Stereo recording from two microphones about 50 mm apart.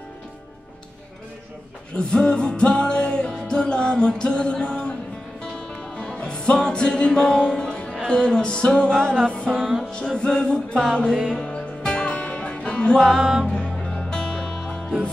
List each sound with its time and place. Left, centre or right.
2.0 s music: centre
5.9 s music: centre
9.6 s music: centre
9.8 s music: centre
13.1 s music: centre
13.6 s music: left